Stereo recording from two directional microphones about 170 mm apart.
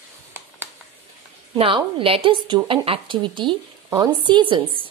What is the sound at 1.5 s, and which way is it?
A woman's voice, 30° right (ahead or behind).